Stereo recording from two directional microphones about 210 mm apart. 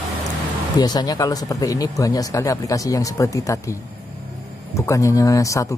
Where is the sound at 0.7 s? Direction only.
20° left (ahead or behind).